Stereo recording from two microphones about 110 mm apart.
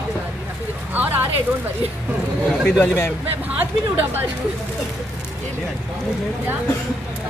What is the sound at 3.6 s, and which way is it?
Speech, 15° right (ahead or behind).